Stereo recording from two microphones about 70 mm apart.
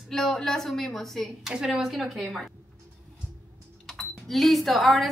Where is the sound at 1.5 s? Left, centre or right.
Centre.